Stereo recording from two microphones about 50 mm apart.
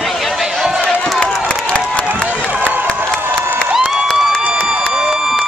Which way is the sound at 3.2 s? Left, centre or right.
Right.